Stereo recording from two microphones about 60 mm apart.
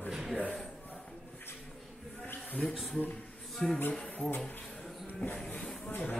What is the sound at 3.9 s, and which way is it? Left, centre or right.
Speech, left.